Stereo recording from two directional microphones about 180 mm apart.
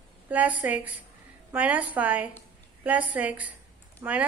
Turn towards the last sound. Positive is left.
turn(degrees=-10)  # may be behind; listen again after turning